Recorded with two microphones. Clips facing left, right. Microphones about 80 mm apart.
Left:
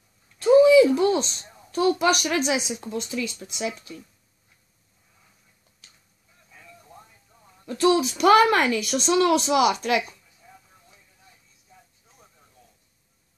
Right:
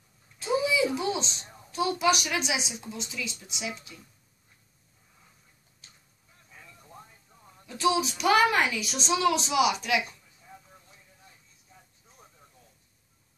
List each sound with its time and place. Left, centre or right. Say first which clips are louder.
0.4 s a woman's voice: left 12 dB; left
7.6 s a woman's voice: left 5 dB; left